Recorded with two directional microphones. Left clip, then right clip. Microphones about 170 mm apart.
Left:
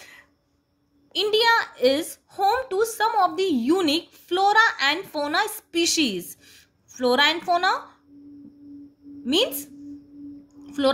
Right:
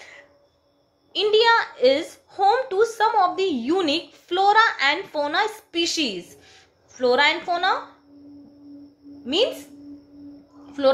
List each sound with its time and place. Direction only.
1.1 s a woman's voice: 40° left (ahead or behind)
9.2 s a woman's voice: 45° left (ahead or behind)